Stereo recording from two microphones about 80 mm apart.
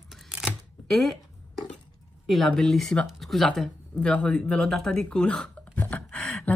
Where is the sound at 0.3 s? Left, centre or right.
Centre.